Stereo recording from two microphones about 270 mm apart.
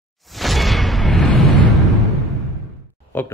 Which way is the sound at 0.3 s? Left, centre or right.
Centre.